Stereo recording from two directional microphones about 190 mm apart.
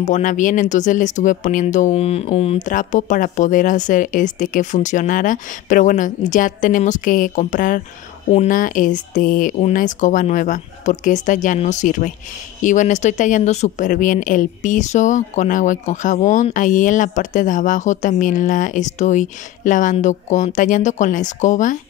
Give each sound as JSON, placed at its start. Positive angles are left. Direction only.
{"t": 0.0, "sound": "speech", "side_deg": 40}